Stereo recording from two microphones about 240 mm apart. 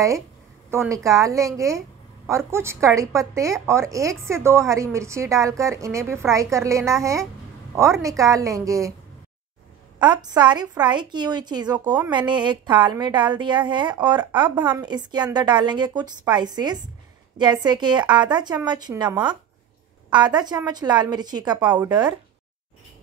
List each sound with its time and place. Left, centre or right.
0.7 s a woman's voice: centre
9.9 s a woman's voice: centre